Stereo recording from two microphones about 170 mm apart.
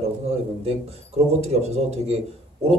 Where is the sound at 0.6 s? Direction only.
35° right (ahead or behind).